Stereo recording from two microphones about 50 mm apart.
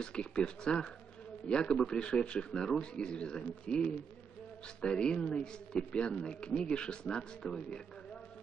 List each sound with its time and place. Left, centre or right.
0.0 s speech: centre